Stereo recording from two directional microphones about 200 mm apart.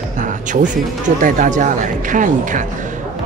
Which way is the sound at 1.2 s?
40° right (ahead or behind).